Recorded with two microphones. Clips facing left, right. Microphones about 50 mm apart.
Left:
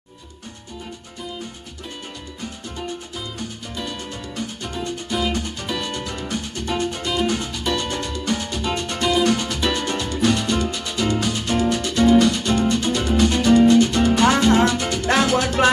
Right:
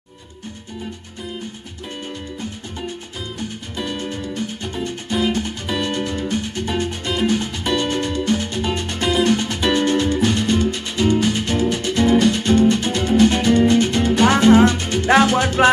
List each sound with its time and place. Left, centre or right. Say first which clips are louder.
3.7 s music: right 6 dB; right